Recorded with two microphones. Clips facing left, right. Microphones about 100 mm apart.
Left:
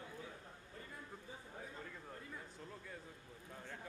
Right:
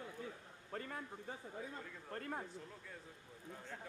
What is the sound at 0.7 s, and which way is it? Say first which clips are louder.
Speech: right 8 dB; 70° right (ahead or behind).